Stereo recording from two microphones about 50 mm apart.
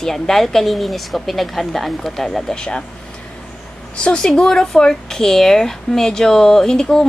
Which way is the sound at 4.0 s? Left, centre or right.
Centre.